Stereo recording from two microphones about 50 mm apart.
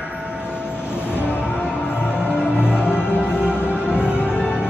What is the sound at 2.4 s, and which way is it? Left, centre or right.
Music, centre.